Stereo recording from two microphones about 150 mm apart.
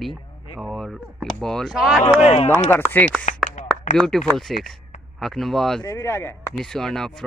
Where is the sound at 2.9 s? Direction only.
10° left (ahead or behind).